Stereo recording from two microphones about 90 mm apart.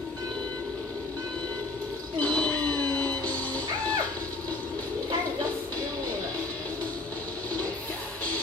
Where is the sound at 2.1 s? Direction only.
15° left (ahead or behind).